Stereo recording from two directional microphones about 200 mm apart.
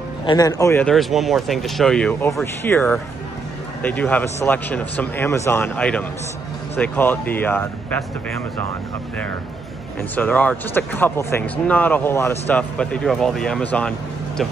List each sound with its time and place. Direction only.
0.3 s speech: 20° left (ahead or behind)
0.8 s speech: centre (ahead or behind)
10.1 s speech: 10° left (ahead or behind)